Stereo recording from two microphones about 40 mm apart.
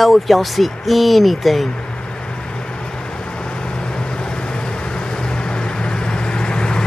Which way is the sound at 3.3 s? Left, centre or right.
Left.